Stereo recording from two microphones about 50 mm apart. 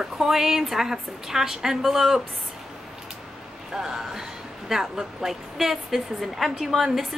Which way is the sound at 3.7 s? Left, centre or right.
Centre.